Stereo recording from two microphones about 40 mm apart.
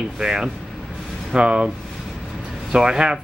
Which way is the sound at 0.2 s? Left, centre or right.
Centre.